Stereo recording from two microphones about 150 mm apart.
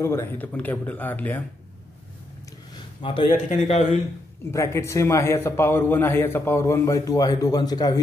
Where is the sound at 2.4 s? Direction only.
25° left (ahead or behind).